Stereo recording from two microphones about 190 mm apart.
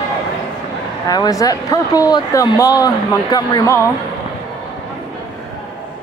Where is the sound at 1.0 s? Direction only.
20° left (ahead or behind).